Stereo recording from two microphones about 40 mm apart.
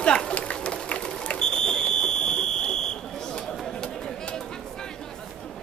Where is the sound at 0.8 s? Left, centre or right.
Left.